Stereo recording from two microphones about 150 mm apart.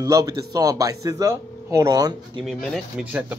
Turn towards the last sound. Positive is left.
turn(degrees=-10)  # may be behind; listen again after turning